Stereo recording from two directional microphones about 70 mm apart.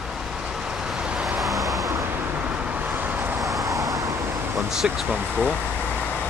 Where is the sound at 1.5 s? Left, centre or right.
Right.